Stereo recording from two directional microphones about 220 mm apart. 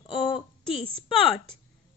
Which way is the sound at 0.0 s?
25° left (ahead or behind).